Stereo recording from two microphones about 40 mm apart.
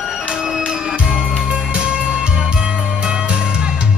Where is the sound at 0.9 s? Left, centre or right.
Right.